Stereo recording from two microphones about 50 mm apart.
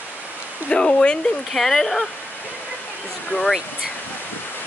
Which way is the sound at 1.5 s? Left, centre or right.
Centre.